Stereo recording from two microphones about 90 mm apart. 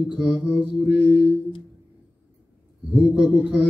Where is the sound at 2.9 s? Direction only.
15° right (ahead or behind).